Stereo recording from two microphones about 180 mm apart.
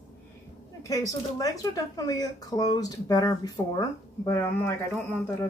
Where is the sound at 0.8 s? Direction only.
20° left (ahead or behind).